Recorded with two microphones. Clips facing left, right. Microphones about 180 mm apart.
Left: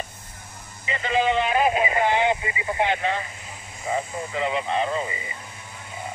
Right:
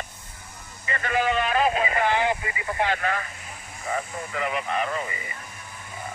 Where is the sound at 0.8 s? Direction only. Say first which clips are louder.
Left 2 dB; 20° left (ahead or behind).